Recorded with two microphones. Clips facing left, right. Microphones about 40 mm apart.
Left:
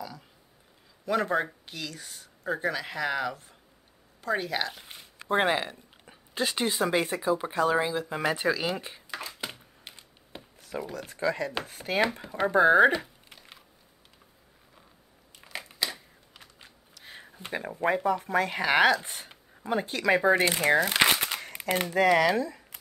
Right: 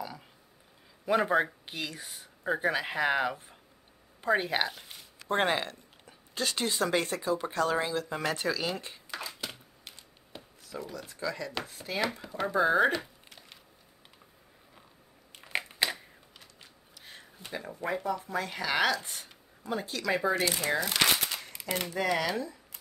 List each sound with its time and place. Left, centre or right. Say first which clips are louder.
1.0 s speech: right 1 dB; centre
5.3 s speech: left 3 dB; centre
5.7 s speech: left 1 dB; centre
9.4 s a sound: left 2 dB; left
11.0 s speech: left 7 dB; left
12.0 s speech: left 5 dB; left
12.4 s speech: left 6 dB; left
15.3 s crushing: right 6 dB; right
17.0 s a sound: left 3 dB; centre
17.4 s speech: left 7 dB; left
20.9 s crumpling: left 4 dB; left
21.8 s speech: left 8 dB; left